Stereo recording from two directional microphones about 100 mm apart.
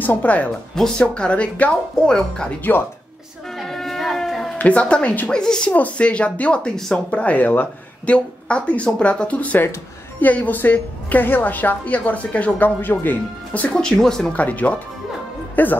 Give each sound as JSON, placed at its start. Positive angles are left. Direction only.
{"t": 0.0, "sound": "a woman's voice", "side_deg": 15}
{"t": 3.5, "sound": "a sound", "side_deg": 5}
{"t": 4.6, "sound": "a woman's voice", "side_deg": 10}
{"t": 14.3, "sound": "a woman's voice", "side_deg": 15}